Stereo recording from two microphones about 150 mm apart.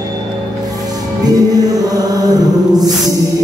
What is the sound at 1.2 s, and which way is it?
Music, 25° right (ahead or behind).